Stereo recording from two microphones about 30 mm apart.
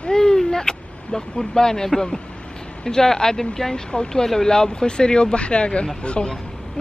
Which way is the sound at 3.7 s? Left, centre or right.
Left.